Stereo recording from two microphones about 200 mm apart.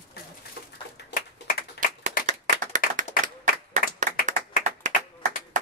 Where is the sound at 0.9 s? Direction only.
50° left (ahead or behind).